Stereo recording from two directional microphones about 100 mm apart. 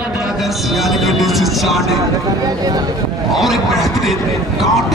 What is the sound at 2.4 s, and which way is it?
Speech, 40° right (ahead or behind).